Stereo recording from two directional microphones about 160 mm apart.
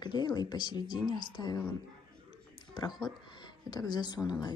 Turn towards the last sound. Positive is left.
turn(degrees=25)  # may be behind; listen again after turning